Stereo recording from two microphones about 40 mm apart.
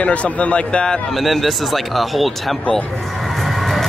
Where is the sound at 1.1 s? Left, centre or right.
Centre.